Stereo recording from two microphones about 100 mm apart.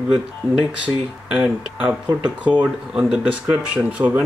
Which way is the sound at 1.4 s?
15° right (ahead or behind).